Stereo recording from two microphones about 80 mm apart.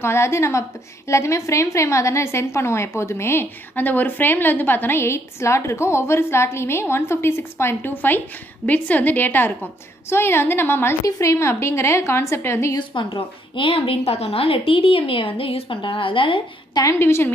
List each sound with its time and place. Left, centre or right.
0.0 s a woman's voice: left
11.1 s a woman's voice: left
12.7 s a woman's voice: left
15.0 s a woman's voice: left
16.8 s a woman's voice: left